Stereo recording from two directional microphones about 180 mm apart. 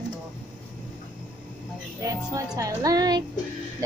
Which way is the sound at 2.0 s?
20° right (ahead or behind).